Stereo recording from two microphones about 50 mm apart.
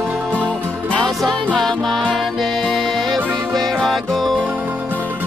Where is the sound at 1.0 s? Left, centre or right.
Centre.